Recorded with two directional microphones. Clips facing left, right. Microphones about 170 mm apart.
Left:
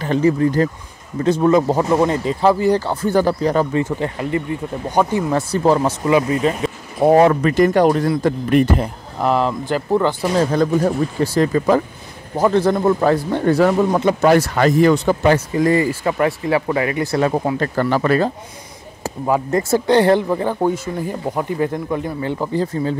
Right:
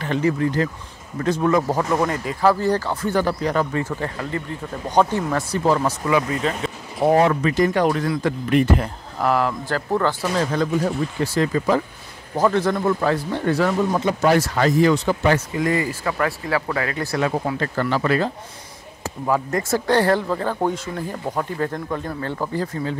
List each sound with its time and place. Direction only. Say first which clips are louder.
0.0 s speech: left 5 dB; 35° left (ahead or behind); by 2.9 s 15° left (ahead or behind)
2.9 s speech: left 4 dB; 30° left (ahead or behind)
3.8 s speech: left 5 dB; 20° left (ahead or behind)
5.3 s speech: left 4 dB; 30° left (ahead or behind)
7.2 s speech: left 5 dB; 40° left (ahead or behind)
8.8 s speech: left 2 dB; 20° left (ahead or behind)
10.3 s speech: left 5 dB; 35° left (ahead or behind)
12.5 s speech: left 5 dB; 30° left (ahead or behind)
13.9 s speech: left 4 dB; 55° left (ahead or behind)
15.2 s speech: left 5 dB; 35° left (ahead or behind); by 17.2 s 15° left (ahead or behind)
17.2 s speech: left 3 dB; 35° left (ahead or behind)
19.0 s speech: left 3 dB; 25° left (ahead or behind)